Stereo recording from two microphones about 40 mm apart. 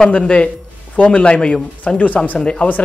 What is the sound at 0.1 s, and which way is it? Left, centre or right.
A woman's voice, left.